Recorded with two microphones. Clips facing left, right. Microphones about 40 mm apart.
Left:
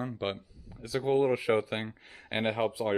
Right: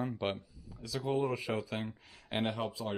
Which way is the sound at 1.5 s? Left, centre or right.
Left.